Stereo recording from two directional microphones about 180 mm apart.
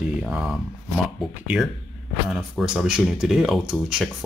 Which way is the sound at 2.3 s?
5° right (ahead or behind).